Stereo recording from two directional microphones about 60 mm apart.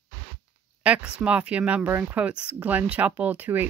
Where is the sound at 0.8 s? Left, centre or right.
Right.